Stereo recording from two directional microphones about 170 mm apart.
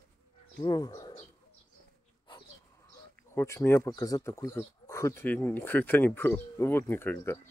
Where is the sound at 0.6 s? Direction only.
20° left (ahead or behind).